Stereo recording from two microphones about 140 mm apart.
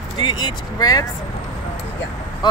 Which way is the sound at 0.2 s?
30° left (ahead or behind).